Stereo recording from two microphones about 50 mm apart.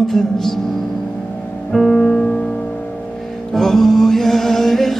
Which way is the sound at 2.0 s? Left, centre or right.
Centre.